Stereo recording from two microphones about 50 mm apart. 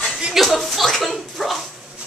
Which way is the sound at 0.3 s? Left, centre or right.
Centre.